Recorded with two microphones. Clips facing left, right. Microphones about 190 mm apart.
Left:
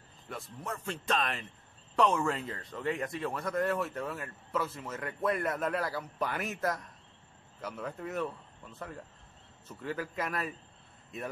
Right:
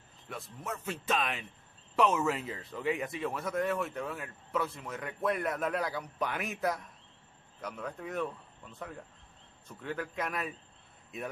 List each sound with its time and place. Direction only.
0.3 s speech: centre (ahead or behind)